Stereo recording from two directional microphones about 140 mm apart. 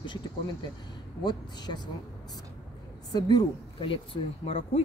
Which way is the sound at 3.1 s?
35° left (ahead or behind).